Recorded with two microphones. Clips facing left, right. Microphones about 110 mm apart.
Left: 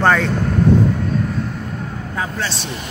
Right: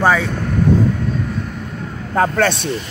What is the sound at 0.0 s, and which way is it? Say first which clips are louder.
Speech: even; 5° right (ahead or behind).